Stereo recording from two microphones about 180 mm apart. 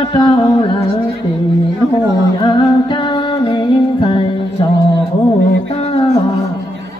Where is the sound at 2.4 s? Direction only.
25° left (ahead or behind).